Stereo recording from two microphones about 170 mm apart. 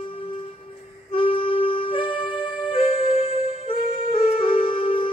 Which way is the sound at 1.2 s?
30° left (ahead or behind).